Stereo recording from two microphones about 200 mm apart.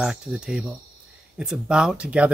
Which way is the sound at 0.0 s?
5° right (ahead or behind).